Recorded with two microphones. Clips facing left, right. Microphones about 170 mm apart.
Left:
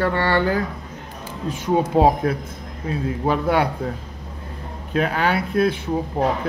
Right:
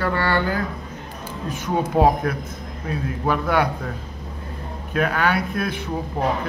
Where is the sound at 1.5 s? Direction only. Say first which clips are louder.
Left 3 dB; 30° left (ahead or behind).